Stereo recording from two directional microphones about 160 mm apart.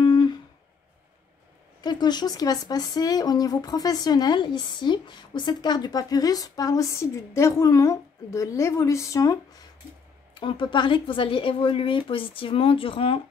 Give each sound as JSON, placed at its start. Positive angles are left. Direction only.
{"t": 0.0, "sound": "a sound", "side_deg": 30}
{"t": 1.8, "sound": "speech", "side_deg": 25}
{"t": 10.3, "sound": "speech", "side_deg": 30}